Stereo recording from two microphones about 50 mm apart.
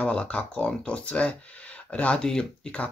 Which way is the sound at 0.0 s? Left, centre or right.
Left.